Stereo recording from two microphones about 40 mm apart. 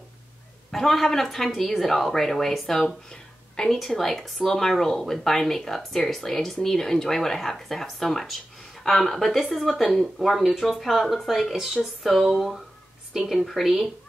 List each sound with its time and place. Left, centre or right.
0.7 s speech: centre
3.1 s a sound: centre
3.7 s speech: centre
11.5 s a woman's voice: centre